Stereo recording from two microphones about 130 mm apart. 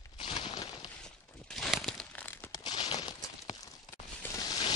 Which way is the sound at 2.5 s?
35° left (ahead or behind).